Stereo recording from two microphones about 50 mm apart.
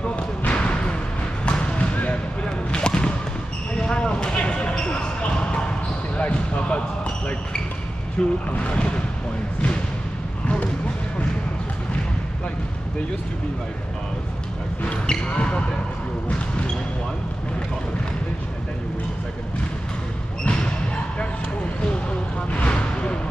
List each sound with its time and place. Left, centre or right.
0.0 s basketball bounce: left
1.4 s a sound: left
3.8 s basketball bounce: centre
8.2 s speech: centre
15.0 s basketball bounce: centre
20.4 s basketball bounce: left
22.5 s a sound: left